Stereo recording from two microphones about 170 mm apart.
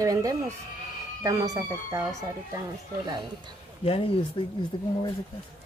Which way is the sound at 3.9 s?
35° left (ahead or behind).